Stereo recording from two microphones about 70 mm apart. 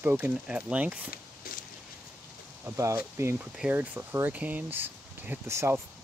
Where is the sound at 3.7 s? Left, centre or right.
Right.